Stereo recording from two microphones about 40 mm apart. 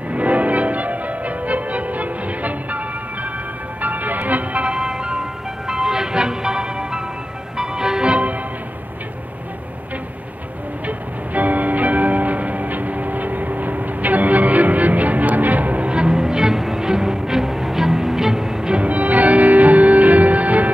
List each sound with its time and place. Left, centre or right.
0.1 s music: right
3.8 s music: right
4.7 s music: centre
10.9 s music: right
15.9 s music: right
18.8 s music: right